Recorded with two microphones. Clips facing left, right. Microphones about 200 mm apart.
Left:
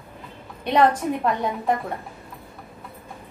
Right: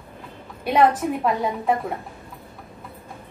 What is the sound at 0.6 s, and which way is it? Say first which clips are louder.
A woman's voice: right 1 dB; 5° right (ahead or behind).